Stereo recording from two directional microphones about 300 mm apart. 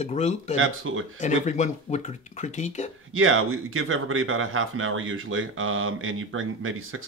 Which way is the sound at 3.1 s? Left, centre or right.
Right.